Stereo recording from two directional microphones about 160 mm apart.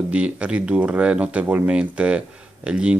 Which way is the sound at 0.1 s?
5° right (ahead or behind).